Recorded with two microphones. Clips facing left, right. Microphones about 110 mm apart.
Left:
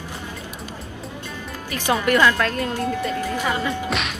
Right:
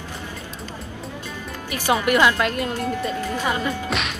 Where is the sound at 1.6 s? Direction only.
10° right (ahead or behind).